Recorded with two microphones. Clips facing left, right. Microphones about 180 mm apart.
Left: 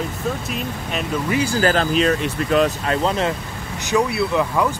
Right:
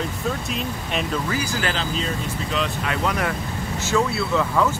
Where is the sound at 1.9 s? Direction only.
70° left (ahead or behind).